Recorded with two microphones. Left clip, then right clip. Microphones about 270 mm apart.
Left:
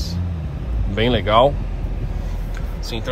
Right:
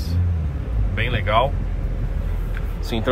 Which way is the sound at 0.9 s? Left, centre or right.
Centre.